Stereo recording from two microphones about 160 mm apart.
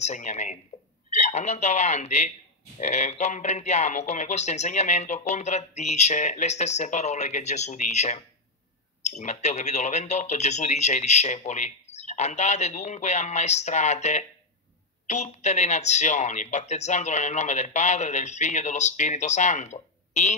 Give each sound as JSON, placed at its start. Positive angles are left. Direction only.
{"t": 0.0, "sound": "speech", "side_deg": 45}